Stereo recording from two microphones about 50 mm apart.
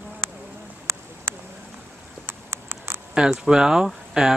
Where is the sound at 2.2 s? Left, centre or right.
Right.